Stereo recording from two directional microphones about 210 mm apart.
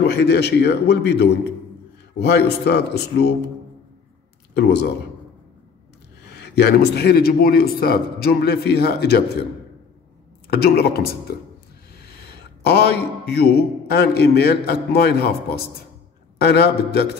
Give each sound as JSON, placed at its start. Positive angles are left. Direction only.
{"t": 0.1, "sound": "a man's voice", "side_deg": 50}
{"t": 4.6, "sound": "a man's voice", "side_deg": 50}
{"t": 6.2, "sound": "a man's voice", "side_deg": 55}
{"t": 10.5, "sound": "a man's voice", "side_deg": 50}